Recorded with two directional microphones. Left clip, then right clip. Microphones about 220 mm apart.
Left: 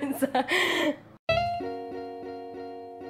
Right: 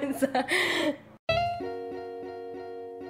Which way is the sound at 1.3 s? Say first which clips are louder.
Left 1 dB; centre (ahead or behind).